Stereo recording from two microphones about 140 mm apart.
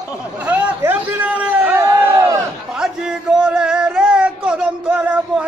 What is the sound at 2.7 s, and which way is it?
Speech, 5° right (ahead or behind).